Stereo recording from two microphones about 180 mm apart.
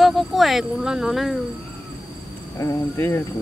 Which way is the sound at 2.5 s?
20° left (ahead or behind).